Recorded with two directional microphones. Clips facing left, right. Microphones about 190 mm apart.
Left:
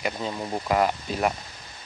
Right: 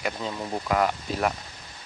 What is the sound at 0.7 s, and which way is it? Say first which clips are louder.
Speech: left 1 dB; 20° left (ahead or behind).